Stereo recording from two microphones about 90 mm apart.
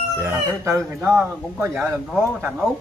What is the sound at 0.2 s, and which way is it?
Speech, 30° right (ahead or behind).